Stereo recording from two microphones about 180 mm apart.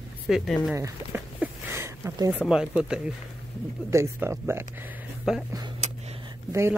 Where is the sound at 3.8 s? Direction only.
15° right (ahead or behind).